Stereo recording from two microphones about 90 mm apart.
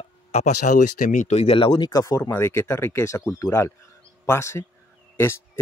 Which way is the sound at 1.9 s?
40° left (ahead or behind).